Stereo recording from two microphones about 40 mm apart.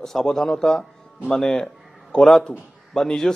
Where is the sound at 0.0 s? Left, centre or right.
Centre.